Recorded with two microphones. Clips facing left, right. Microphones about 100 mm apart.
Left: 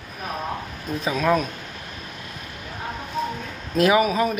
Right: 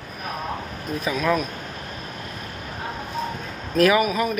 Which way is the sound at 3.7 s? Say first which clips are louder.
Even; 25° left (ahead or behind).